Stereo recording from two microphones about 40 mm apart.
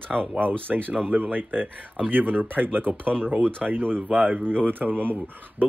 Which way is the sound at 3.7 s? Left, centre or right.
Right.